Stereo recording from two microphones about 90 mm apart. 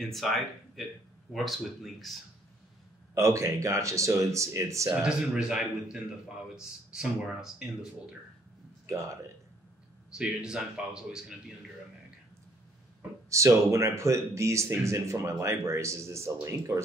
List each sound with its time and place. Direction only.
0.0 s speech: centre (ahead or behind)
3.2 s speech: 35° right (ahead or behind)
5.0 s a man's voice: 10° right (ahead or behind)
8.8 s speech: 35° right (ahead or behind)
10.1 s a man's voice: 10° right (ahead or behind)
13.3 s speech: 35° right (ahead or behind)